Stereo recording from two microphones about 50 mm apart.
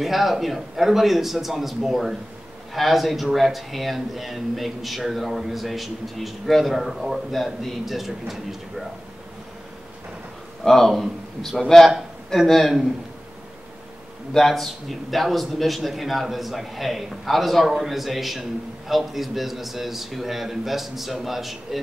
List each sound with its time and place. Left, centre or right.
0.0 s speech: centre
10.6 s a man's voice: centre
14.3 s speech: centre